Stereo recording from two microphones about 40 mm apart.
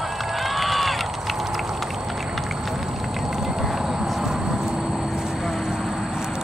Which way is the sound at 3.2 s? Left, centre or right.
Centre.